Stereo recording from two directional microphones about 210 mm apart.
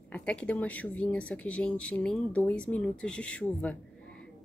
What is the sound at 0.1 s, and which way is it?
A woman's voice, 5° left (ahead or behind).